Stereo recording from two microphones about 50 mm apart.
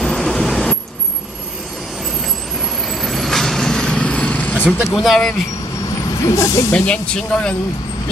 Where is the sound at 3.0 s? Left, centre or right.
Centre; by 4.6 s left.